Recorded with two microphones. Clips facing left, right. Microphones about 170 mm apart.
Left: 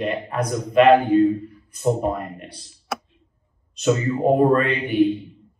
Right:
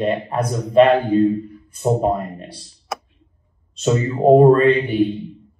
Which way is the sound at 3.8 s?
35° right (ahead or behind).